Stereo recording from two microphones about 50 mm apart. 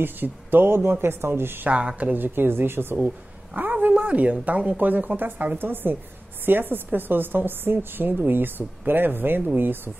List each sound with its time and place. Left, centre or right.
0.0 s a woman's voice: right
1.7 s a woman's voice: right
2.1 s a woman's voice: right
3.9 s a woman's voice: right